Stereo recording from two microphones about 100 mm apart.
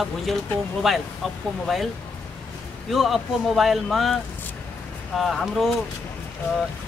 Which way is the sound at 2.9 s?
Centre (ahead or behind).